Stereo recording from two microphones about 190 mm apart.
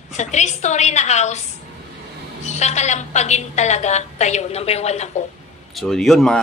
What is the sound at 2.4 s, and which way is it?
A woman's voice, 35° left (ahead or behind).